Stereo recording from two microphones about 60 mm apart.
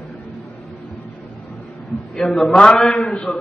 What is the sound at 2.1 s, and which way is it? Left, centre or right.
A man's voice, centre.